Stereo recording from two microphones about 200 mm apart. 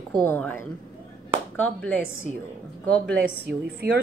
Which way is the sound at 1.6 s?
5° left (ahead or behind).